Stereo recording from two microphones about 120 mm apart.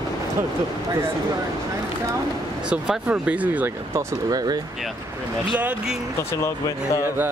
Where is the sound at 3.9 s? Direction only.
30° right (ahead or behind).